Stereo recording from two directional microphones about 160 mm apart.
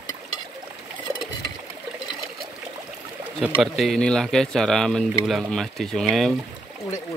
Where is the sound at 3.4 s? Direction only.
Centre (ahead or behind).